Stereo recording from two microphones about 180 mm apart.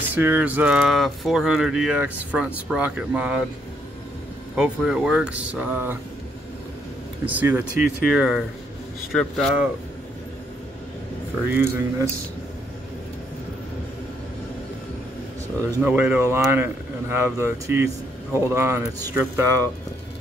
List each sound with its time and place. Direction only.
0.1 s speech: 10° right (ahead or behind)
4.6 s speech: 5° right (ahead or behind)
7.3 s speech: 10° right (ahead or behind)
11.4 s speech: 10° right (ahead or behind)
15.8 s speech: 10° right (ahead or behind)